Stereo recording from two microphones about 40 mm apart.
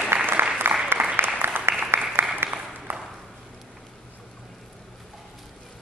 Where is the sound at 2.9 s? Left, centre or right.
Right.